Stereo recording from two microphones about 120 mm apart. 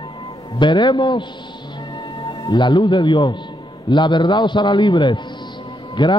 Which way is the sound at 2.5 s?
35° left (ahead or behind).